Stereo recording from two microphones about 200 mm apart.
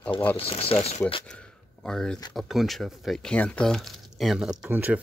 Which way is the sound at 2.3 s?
Centre (ahead or behind).